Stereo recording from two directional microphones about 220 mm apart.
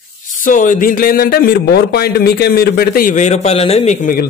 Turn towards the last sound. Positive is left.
turn(degrees=35)  # may be behind; listen again after turning